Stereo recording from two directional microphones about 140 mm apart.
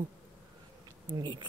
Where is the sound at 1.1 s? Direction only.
35° right (ahead or behind).